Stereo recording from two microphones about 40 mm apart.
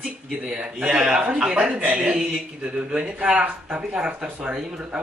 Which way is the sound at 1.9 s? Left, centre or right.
Right.